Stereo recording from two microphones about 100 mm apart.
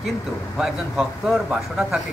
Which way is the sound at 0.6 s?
5° right (ahead or behind).